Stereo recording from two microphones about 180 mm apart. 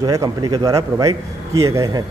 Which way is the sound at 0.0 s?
20° right (ahead or behind).